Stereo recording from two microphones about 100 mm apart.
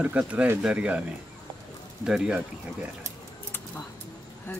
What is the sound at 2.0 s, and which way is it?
Speech, 5° right (ahead or behind).